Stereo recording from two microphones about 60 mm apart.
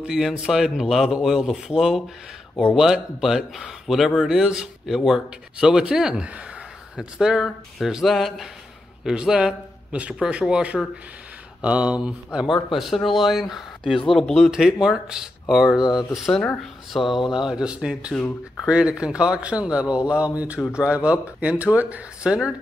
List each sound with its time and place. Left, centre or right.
0.0 s a man's voice: centre
12.7 s speech: centre
14.5 s a man's voice: centre